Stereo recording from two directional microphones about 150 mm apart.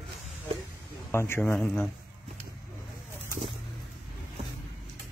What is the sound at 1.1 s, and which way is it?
Speech, 15° left (ahead or behind).